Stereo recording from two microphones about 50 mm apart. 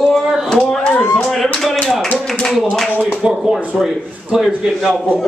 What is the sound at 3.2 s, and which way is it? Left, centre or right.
A man's voice, centre.